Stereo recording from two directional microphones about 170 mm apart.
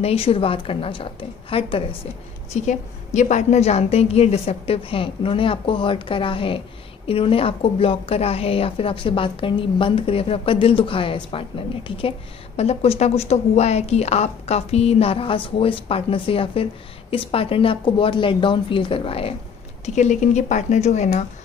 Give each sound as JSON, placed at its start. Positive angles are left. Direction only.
{"t": 0.0, "sound": "a woman's voice", "side_deg": 35}
{"t": 2.5, "sound": "a woman's voice", "side_deg": 45}